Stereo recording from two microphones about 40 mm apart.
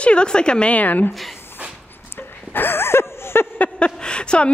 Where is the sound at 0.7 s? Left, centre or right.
Left.